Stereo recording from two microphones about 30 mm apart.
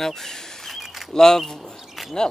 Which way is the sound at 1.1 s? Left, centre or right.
Centre.